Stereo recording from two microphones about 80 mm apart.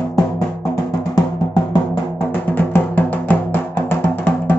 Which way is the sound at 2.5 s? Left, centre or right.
Left.